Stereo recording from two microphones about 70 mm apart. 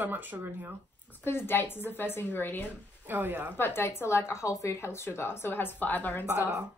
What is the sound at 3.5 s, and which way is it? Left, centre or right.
A woman's voice, left.